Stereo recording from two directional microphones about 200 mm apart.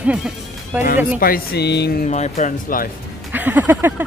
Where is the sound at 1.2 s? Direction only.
50° left (ahead or behind).